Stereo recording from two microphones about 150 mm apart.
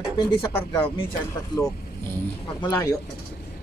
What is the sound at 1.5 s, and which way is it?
Speech, 25° left (ahead or behind).